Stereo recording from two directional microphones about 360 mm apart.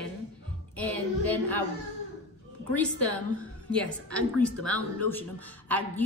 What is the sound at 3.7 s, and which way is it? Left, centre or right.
A woman's voice, centre.